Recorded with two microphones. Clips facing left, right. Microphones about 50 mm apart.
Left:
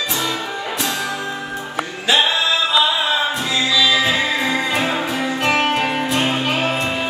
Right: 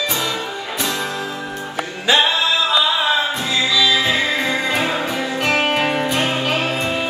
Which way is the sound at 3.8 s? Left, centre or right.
Centre.